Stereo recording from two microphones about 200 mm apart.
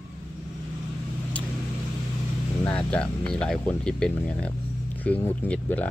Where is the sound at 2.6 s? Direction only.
5° left (ahead or behind).